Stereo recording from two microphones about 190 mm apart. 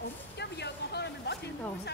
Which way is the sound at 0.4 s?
60° left (ahead or behind).